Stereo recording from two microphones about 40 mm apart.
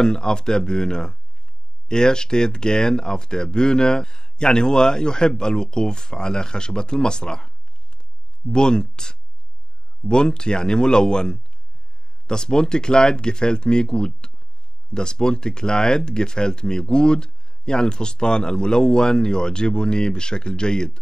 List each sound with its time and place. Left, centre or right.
0.0 s speech: centre